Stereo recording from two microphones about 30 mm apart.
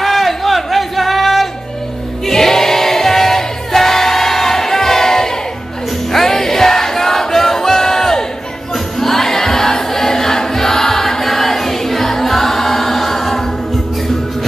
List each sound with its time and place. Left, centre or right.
0.0 s a sound: centre
2.2 s choir: centre
6.1 s music: centre
8.7 s choir: centre